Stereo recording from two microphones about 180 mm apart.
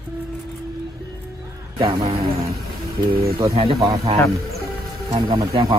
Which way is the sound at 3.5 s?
30° right (ahead or behind).